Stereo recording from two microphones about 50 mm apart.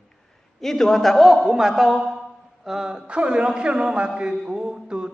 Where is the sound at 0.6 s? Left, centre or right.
Centre.